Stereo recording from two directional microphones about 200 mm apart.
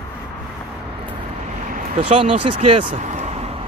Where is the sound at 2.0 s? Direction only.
30° right (ahead or behind).